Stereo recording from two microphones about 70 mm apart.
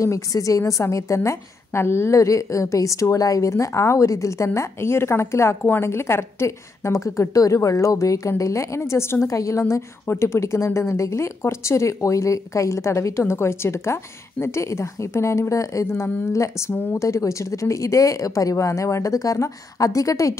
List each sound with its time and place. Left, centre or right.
0.0 s a woman's voice: left